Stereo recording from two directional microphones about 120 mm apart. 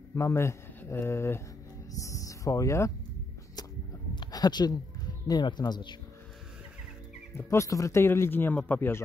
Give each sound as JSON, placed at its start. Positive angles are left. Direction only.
{"t": 0.1, "sound": "speech", "side_deg": 25}
{"t": 4.1, "sound": "speech", "side_deg": 35}
{"t": 7.3, "sound": "speech", "side_deg": 25}